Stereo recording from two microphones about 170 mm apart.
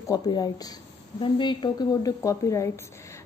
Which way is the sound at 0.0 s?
20° left (ahead or behind).